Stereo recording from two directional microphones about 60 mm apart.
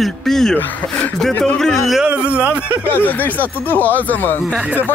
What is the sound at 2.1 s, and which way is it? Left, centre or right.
Speech, right.